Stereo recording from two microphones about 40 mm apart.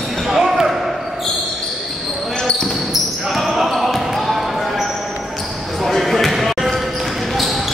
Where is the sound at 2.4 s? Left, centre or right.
Centre.